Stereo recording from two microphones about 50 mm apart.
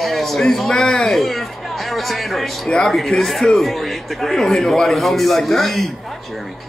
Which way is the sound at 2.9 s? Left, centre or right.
Centre.